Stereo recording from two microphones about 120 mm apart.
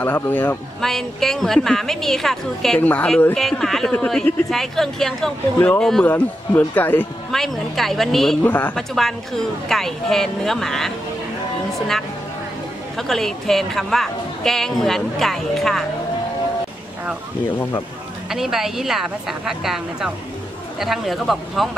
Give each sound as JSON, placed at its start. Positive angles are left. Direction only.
{"t": 0.0, "sound": "speech", "side_deg": 15}
{"t": 0.7, "sound": "speech", "side_deg": 0}
{"t": 3.3, "sound": "speech", "side_deg": 5}
{"t": 5.6, "sound": "speech", "side_deg": 15}
{"t": 7.2, "sound": "speech", "side_deg": 0}
{"t": 8.5, "sound": "speech", "side_deg": 15}
{"t": 8.9, "sound": "speech", "side_deg": 0}
{"t": 12.9, "sound": "speech", "side_deg": 0}
{"t": 18.3, "sound": "speech", "side_deg": -5}